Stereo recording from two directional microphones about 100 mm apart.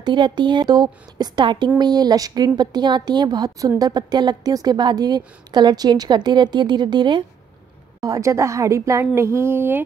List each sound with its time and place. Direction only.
0.0 s a woman's voice: 50° right (ahead or behind)
8.0 s a woman's voice: 35° right (ahead or behind)
9.1 s a sound: 25° right (ahead or behind)